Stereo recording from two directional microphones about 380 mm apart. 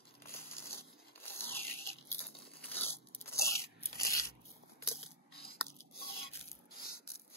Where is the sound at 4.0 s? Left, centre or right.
Centre.